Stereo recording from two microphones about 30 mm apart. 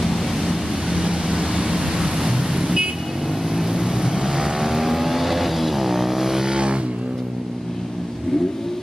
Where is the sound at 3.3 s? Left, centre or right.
Centre.